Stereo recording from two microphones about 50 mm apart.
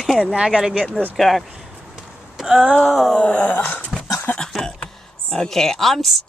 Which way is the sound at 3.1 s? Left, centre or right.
Left.